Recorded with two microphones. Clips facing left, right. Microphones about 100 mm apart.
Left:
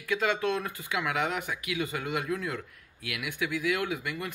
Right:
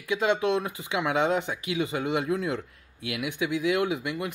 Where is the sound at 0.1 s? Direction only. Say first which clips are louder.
Right 4 dB; 20° right (ahead or behind).